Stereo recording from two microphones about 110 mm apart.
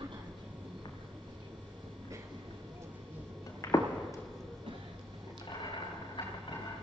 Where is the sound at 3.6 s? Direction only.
30° left (ahead or behind).